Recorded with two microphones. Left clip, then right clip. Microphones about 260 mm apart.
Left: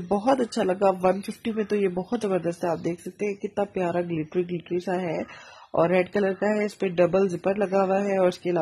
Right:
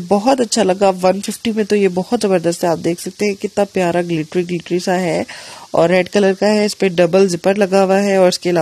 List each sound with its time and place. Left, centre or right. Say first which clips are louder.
0.1 s speech: right 9 dB; right